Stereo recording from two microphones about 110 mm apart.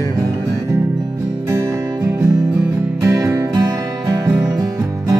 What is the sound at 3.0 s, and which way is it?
Music, 30° right (ahead or behind).